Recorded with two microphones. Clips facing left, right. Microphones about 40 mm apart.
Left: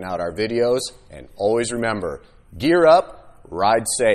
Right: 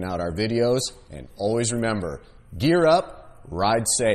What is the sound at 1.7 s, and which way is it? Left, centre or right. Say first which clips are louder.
Speech: left 2 dB; left.